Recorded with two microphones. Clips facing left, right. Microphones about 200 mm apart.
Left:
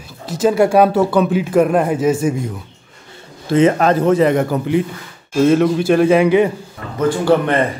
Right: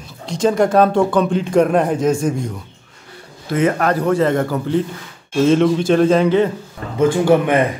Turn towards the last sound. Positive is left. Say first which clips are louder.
# right 1 dB
turn(degrees=-15)  # may be behind; listen again after turning